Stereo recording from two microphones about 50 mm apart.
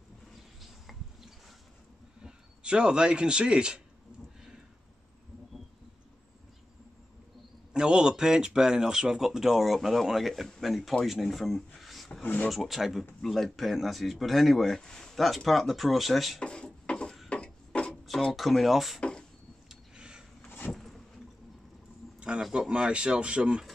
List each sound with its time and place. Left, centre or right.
0.6 s a sound: centre
2.2 s speech: centre
7.7 s a man's voice: centre
12.2 s speech: left
12.4 s speech: centre
14.8 s speech: centre
16.3 s a sound: centre
18.3 s speech: centre
18.9 s a sound: centre
19.7 s a sound: centre
20.4 s vehicle: left
20.7 s vehicle: centre
22.4 s speech: centre